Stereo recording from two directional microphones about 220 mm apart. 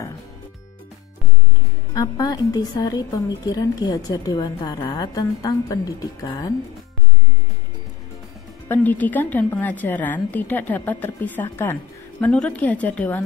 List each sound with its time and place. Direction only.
2.0 s a woman's voice: 15° left (ahead or behind)
8.6 s a woman's voice: 5° left (ahead or behind)